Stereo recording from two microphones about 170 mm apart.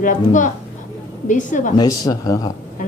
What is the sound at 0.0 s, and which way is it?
A woman's voice, 50° left (ahead or behind).